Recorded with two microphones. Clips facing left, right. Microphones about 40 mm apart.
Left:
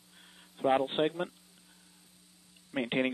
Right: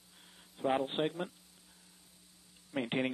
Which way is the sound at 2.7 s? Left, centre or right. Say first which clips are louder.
Left 3 dB; centre.